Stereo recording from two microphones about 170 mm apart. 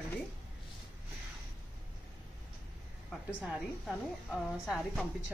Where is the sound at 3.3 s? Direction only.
5° right (ahead or behind).